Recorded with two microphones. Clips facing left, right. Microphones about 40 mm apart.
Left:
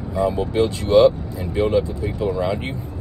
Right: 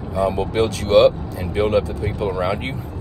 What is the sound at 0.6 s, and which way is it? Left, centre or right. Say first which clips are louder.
Speech: even; right.